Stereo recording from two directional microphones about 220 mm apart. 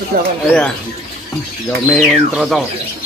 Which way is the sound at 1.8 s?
5° left (ahead or behind).